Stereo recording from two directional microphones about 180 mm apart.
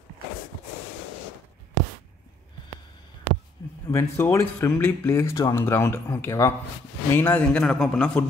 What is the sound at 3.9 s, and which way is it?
Speech, 15° left (ahead or behind).